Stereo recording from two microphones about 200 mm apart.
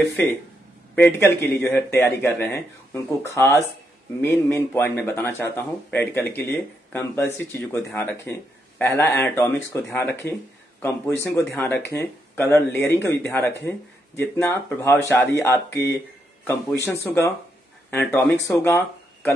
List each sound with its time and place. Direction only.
0.9 s speech: 10° left (ahead or behind)